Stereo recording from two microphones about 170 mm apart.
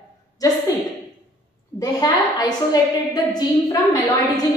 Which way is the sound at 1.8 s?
25° left (ahead or behind).